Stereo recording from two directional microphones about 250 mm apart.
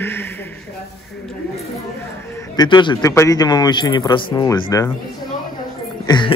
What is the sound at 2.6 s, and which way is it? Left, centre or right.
A man's voice, centre.